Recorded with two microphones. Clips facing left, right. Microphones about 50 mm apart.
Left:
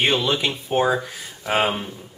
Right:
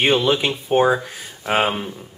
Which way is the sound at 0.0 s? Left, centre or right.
Centre.